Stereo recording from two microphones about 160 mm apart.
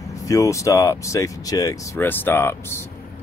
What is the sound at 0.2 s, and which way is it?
Speech, 20° left (ahead or behind).